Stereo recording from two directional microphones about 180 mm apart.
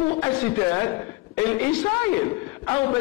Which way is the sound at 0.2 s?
20° left (ahead or behind).